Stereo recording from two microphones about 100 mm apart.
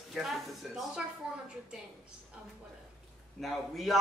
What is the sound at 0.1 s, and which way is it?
Speech, centre (ahead or behind).